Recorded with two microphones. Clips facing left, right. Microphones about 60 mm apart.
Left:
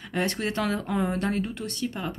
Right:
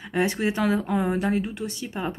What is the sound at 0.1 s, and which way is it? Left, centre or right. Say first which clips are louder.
A woman's voice: right 4 dB; centre.